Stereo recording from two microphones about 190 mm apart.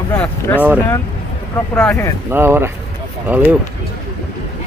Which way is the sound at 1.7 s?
5° left (ahead or behind).